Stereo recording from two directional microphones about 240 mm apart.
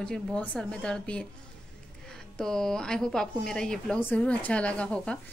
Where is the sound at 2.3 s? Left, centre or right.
Centre.